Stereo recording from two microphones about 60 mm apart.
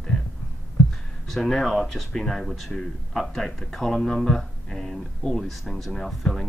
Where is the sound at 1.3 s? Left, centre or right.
Centre.